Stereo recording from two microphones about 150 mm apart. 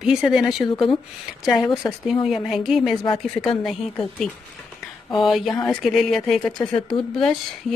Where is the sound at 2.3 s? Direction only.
Centre (ahead or behind).